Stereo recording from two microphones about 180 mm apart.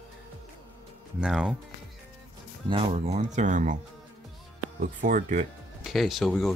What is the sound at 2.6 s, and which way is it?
Speech, 30° right (ahead or behind).